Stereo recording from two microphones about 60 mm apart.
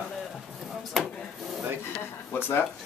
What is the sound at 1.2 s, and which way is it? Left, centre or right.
Speech, centre.